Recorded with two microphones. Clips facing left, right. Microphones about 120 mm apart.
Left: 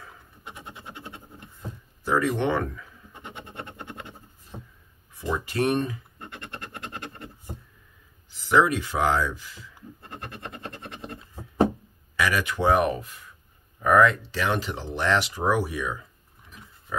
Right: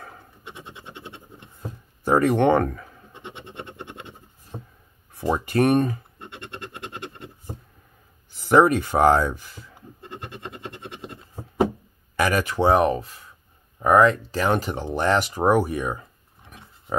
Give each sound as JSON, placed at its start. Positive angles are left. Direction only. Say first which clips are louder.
{"t": 0.5, "sound": "scratch", "louder": "right 1 dB", "side_deg": -20}
{"t": 2.0, "sound": "speech", "louder": "right 6 dB", "side_deg": -55}
{"t": 3.1, "sound": "scratch", "louder": "right 1 dB", "side_deg": -20}
{"t": 5.1, "sound": "speech", "louder": "right 6 dB", "side_deg": -65}
{"t": 6.1, "sound": "scratch", "louder": "right 1 dB", "side_deg": -20}
{"t": 8.3, "sound": "speech", "louder": "right 5 dB", "side_deg": -50}
{"t": 9.8, "sound": "scratch", "louder": "right 2 dB", "side_deg": -20}
{"t": 12.2, "sound": "speech", "louder": "right 3 dB", "side_deg": -45}
{"t": 12.5, "sound": "speech", "louder": "right 3 dB", "side_deg": -30}
{"t": 14.3, "sound": "speech", "louder": "right 4 dB", "side_deg": -45}